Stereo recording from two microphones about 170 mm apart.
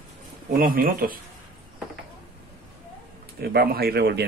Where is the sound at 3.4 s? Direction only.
65° right (ahead or behind).